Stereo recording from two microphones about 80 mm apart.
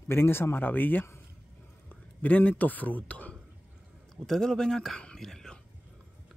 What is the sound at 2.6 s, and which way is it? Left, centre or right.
Speech, left.